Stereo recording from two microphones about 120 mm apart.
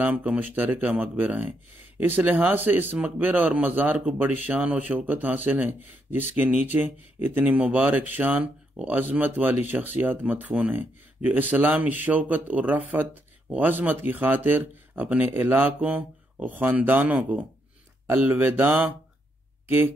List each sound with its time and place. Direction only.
0.0 s speech: 10° right (ahead or behind)